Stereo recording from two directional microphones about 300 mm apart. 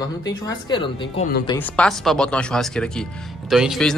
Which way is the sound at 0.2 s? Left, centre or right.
Centre.